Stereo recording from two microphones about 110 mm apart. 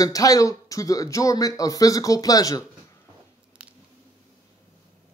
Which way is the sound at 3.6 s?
10° right (ahead or behind).